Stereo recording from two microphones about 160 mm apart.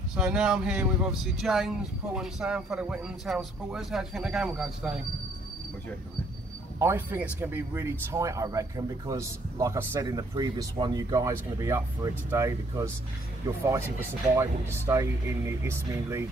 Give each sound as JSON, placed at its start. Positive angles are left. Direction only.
{"t": 0.1, "sound": "speech", "side_deg": -5}
{"t": 6.8, "sound": "speech", "side_deg": -15}